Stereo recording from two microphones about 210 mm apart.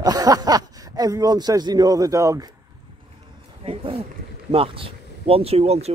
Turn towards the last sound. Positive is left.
turn(degrees=-30)  # may be behind; listen again after turning